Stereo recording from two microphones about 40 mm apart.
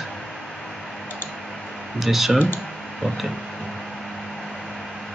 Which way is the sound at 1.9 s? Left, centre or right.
Centre.